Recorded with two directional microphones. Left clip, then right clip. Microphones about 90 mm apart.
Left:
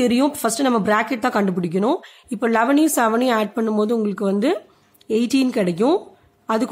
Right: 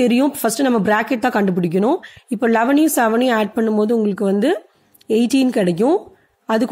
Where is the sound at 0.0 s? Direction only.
30° right (ahead or behind).